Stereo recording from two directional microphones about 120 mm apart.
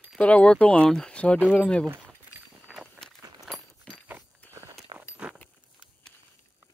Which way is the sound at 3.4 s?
Centre (ahead or behind).